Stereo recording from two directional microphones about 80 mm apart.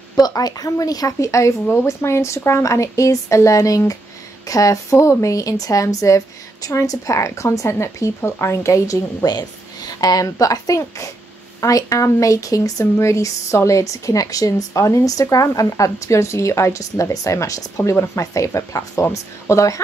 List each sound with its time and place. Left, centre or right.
0.1 s speech: left
9.2 s speech: left